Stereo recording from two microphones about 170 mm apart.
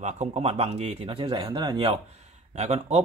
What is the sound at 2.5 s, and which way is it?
Speech, 40° right (ahead or behind).